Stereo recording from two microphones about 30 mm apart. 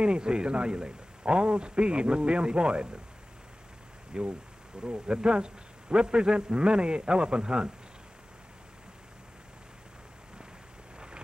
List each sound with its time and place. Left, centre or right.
0.0 s a man's voice: right
4.1 s a man's voice: right